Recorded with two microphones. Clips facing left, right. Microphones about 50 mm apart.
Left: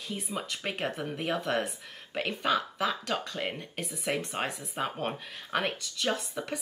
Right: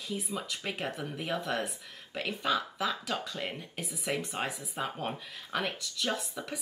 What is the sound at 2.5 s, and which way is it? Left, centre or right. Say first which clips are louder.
Speech: left 2 dB; centre.